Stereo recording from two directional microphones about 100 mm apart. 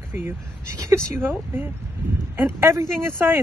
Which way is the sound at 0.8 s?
25° right (ahead or behind).